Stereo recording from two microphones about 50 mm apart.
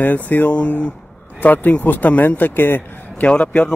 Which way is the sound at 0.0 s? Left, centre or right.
Left.